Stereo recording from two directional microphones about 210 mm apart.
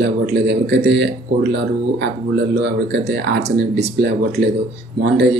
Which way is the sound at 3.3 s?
55° right (ahead or behind).